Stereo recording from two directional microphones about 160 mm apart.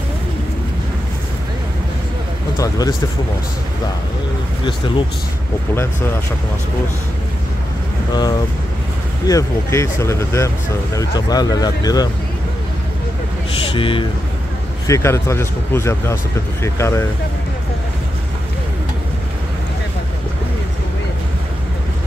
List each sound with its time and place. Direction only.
2.5 s speech: 20° left (ahead or behind)
8.1 s speech: 25° left (ahead or behind)
13.7 s speech: 35° left (ahead or behind)
14.9 s speech: 15° left (ahead or behind)